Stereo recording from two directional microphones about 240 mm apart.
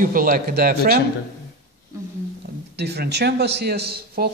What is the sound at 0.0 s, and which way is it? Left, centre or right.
Speech, right.